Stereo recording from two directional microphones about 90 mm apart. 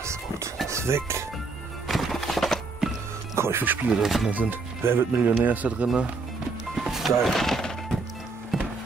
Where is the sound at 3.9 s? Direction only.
Centre (ahead or behind).